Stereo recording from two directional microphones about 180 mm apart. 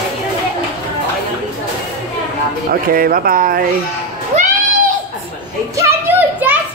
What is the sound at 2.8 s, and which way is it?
Speech, 55° right (ahead or behind).